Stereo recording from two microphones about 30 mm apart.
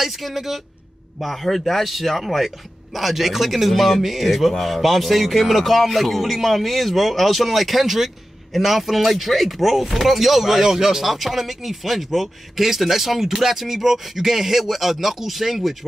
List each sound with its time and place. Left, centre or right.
0.0 s a woman's voice: centre
11.1 s speech: centre